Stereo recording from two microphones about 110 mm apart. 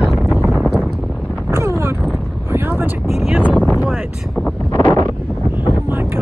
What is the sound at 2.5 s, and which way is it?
Vehicle, 20° right (ahead or behind).